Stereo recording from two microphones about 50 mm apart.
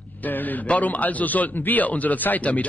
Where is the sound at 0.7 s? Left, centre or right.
Left.